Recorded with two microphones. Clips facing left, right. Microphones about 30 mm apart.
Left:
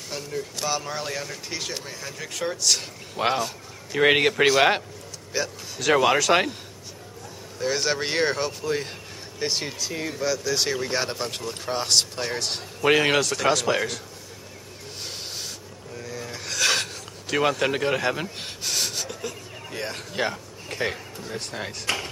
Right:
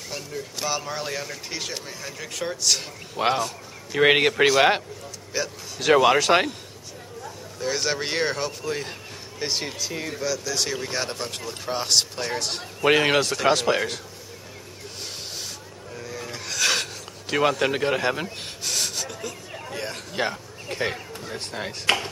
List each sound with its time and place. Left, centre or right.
0.1 s speech: centre
5.8 s speech: centre
6.3 s speech: centre
7.5 s speech: centre
10.2 s a man's voice: centre
15.9 s vehicle: centre
16.3 s filing: centre
17.3 s speech: centre